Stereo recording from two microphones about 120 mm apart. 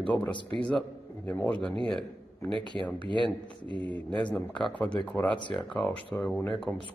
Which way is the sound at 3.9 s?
10° left (ahead or behind).